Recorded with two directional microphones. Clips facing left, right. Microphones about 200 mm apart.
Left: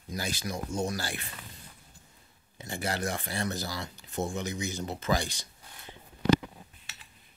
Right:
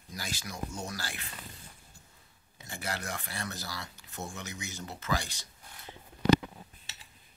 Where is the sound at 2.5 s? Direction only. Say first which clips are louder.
Left 6 dB; 25° left (ahead or behind).